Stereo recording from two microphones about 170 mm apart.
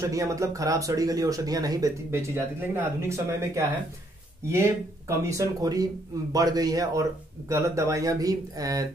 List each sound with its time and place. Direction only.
0.0 s speech: 20° right (ahead or behind)